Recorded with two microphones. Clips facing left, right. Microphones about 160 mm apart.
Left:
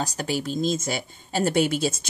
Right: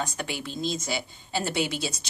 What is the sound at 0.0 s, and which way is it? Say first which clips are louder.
Speech: left 5 dB; 40° left (ahead or behind).